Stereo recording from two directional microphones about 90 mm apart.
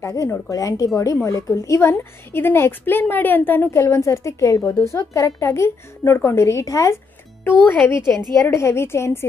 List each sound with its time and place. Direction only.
0.0 s a woman's voice: 40° left (ahead or behind); by 3.8 s 20° left (ahead or behind)
3.8 s a woman's voice: 35° left (ahead or behind)
7.6 s speech: 20° left (ahead or behind)
8.4 s a woman's voice: 30° left (ahead or behind)